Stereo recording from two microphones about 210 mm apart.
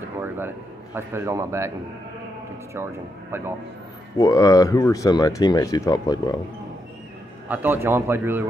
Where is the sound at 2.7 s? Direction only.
10° right (ahead or behind).